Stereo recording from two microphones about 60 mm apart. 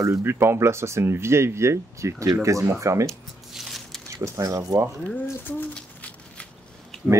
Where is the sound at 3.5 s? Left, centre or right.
Centre.